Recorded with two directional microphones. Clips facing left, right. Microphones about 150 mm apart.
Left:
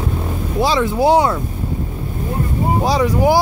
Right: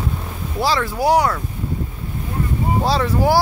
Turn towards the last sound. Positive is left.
turn(degrees=15)  # may be behind; listen again after turning